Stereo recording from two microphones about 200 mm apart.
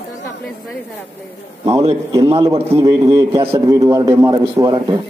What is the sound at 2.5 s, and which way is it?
Speech, 30° right (ahead or behind).